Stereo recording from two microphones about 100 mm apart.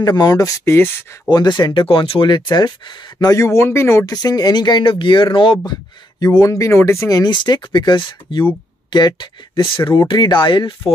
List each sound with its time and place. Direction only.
0.0 s speech: 40° left (ahead or behind)
0.7 s speech: 25° left (ahead or behind)
1.3 s speech: 45° left (ahead or behind)
3.2 s speech: 35° left (ahead or behind); by 5.6 s 55° left (ahead or behind)
5.7 s speech: 45° left (ahead or behind)